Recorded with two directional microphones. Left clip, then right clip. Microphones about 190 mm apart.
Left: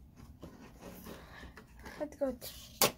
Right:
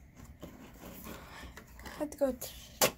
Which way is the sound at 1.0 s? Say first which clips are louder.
Right 3 dB; 30° right (ahead or behind).